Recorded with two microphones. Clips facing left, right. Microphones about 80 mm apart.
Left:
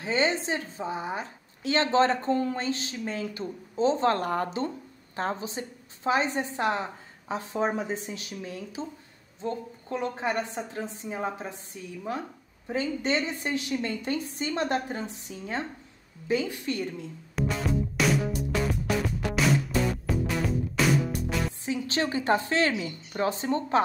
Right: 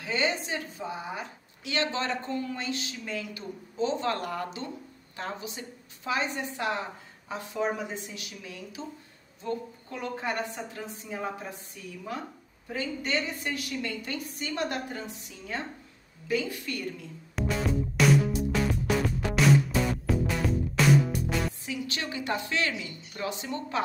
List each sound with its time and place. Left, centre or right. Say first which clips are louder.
0.0 s a woman's voice: left 3 dB; left
17.4 s music: left 1 dB; centre
21.6 s a woman's voice: left 6 dB; left